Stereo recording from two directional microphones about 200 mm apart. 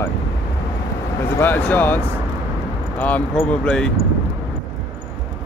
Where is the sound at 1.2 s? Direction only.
10° left (ahead or behind).